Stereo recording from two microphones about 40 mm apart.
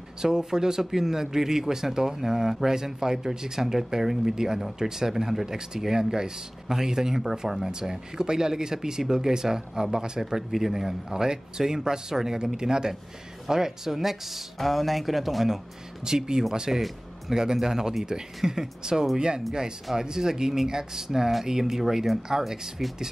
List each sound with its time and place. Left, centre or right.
0.2 s speech: centre